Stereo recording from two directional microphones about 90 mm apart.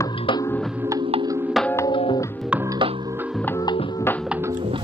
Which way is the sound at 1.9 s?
75° left (ahead or behind).